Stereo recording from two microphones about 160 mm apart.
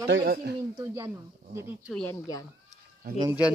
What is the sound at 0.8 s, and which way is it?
Speech, 20° right (ahead or behind).